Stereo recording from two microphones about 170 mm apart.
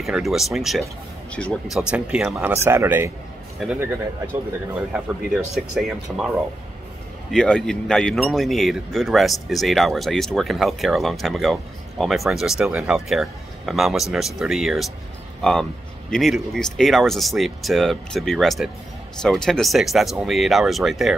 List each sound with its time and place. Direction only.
0.0 s speech: centre (ahead or behind)
2.5 s speech: 15° right (ahead or behind)
16.1 s speech: centre (ahead or behind)